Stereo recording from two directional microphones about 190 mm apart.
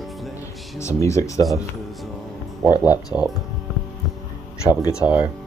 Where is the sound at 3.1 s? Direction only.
10° right (ahead or behind).